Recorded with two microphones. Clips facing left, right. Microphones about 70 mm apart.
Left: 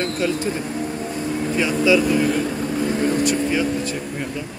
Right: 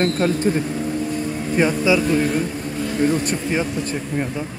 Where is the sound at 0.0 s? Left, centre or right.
Right.